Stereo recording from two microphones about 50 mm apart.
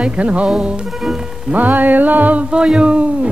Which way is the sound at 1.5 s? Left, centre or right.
Right.